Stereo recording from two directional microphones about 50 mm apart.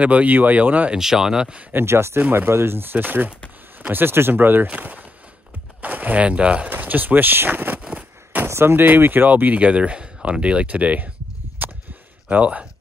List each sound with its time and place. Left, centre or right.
0.0 s speech: right
0.9 s speech: centre
1.9 s speech: right
4.6 s speech: right
6.7 s speech: right
8.5 s speech: right
11.6 s a sound: right
12.3 s speech: right